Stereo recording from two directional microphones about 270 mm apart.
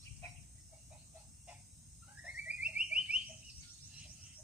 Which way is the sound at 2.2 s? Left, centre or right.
Centre.